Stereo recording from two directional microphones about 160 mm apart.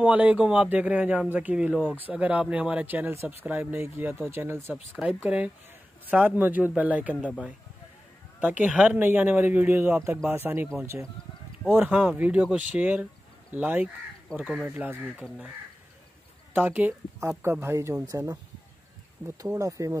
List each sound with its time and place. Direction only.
0.0 s speech: 10° right (ahead or behind)
8.4 s speech: 10° right (ahead or behind)
11.7 s speech: 10° right (ahead or behind)
16.5 s speech: 10° right (ahead or behind)
19.2 s speech: 10° right (ahead or behind)
19.5 s speech: 20° right (ahead or behind)